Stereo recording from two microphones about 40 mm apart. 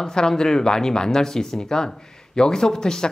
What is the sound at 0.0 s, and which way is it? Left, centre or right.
Speech, centre.